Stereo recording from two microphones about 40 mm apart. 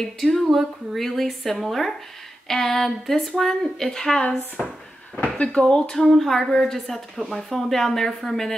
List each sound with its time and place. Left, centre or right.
0.0 s speech: centre
4.6 s speech: left; by 8.5 s centre